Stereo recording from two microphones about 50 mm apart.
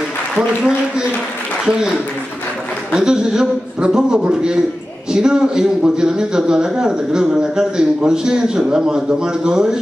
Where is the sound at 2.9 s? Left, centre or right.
Centre.